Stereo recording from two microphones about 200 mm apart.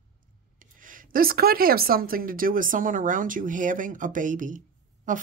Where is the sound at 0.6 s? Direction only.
40° right (ahead or behind).